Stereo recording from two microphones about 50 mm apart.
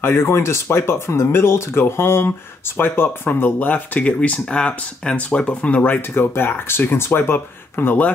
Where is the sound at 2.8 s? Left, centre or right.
Left.